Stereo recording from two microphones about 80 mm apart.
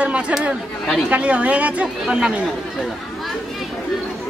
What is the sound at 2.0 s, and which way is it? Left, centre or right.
Speech, centre.